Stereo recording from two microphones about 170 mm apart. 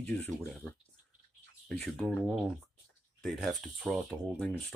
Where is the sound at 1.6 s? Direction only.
Centre (ahead or behind).